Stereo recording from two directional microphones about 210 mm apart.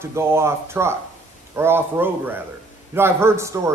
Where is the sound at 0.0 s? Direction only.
10° right (ahead or behind).